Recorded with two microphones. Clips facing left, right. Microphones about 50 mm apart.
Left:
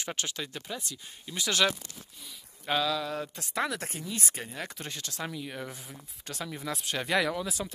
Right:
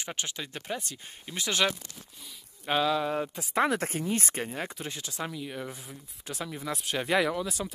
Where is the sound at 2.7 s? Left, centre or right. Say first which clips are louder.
Right 3 dB; right.